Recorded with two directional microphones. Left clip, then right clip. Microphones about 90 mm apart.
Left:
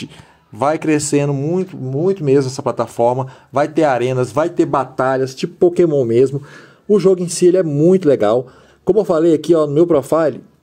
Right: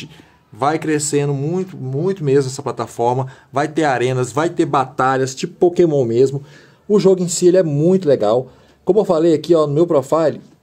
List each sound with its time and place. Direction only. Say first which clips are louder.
0.6 s speech: left 2 dB; 45° left (ahead or behind)
1.3 s speech: left 2 dB; 5° left (ahead or behind)
2.2 s speech: right 1 dB; 20° left (ahead or behind)
4.6 s speech: even; 5° left (ahead or behind)
5.0 s speech: even; 10° right (ahead or behind)
6.0 s speech: left 1 dB; 30° left (ahead or behind)
7.6 s speech: left 3 dB; 15° left (ahead or behind)
7.9 s speech: left 1 dB; 45° left (ahead or behind)
9.7 s speech: left 2 dB; 30° left (ahead or behind)